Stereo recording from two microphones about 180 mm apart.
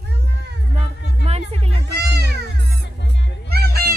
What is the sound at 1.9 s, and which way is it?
Music, 65° right (ahead or behind).